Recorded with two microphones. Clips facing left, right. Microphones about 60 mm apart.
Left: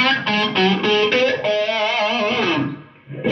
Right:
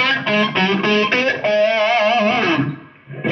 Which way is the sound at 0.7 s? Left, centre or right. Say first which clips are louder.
Even; right.